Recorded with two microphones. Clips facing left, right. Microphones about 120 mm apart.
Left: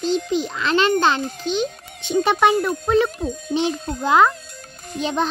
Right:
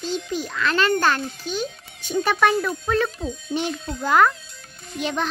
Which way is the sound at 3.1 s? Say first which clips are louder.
Left 4 dB; 45° left (ahead or behind).